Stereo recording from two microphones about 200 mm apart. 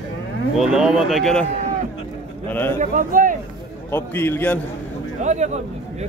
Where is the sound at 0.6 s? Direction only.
Centre (ahead or behind).